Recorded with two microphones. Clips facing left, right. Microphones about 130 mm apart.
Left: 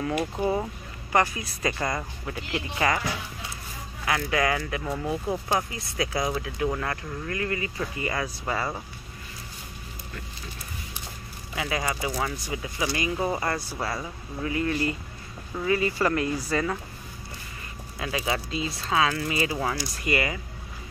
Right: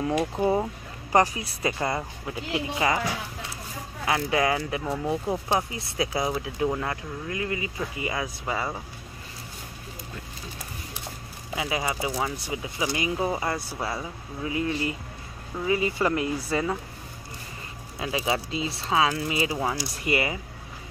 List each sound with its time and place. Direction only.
0.0 s speech: 15° right (ahead or behind)
4.0 s speech: 25° right (ahead or behind); by 8.8 s 5° right (ahead or behind)
11.5 s speech: 15° right (ahead or behind)
12.4 s speech: 20° right (ahead or behind)
13.3 s speech: 5° right (ahead or behind); by 16.7 s 20° right (ahead or behind)
17.9 s speech: 20° right (ahead or behind)